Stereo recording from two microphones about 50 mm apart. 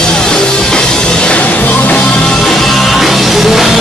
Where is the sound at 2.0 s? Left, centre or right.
Centre.